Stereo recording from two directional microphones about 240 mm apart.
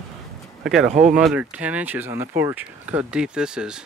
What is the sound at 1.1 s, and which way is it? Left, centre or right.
Speech, centre.